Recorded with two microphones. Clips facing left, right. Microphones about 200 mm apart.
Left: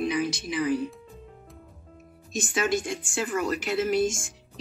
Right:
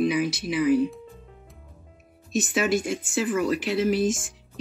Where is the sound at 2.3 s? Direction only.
5° right (ahead or behind).